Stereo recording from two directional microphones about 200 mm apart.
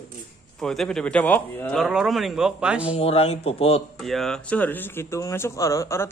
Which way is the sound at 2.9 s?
30° left (ahead or behind).